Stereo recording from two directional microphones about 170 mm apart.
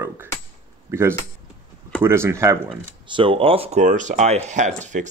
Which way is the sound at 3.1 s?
30° right (ahead or behind).